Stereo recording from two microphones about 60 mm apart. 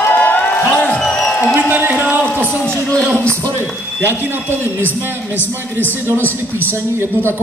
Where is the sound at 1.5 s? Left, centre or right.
Right.